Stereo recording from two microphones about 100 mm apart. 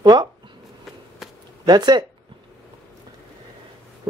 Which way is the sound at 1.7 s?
45° right (ahead or behind).